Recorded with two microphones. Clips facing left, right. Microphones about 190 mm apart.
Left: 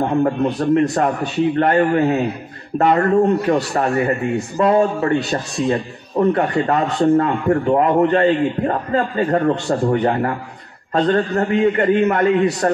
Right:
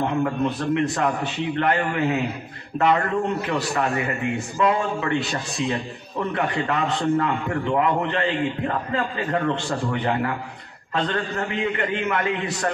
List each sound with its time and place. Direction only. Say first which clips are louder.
0.1 s a man's voice: left 6 dB; 45° left (ahead or behind)